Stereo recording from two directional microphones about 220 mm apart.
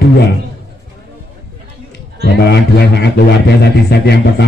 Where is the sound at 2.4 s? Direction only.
50° left (ahead or behind).